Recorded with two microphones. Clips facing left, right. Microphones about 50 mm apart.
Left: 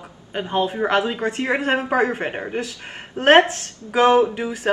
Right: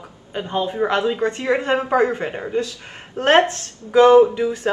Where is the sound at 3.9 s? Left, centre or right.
Centre.